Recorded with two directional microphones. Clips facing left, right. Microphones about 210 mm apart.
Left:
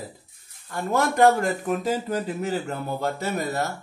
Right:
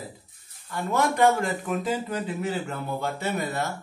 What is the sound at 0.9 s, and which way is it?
A man's voice, 45° left (ahead or behind).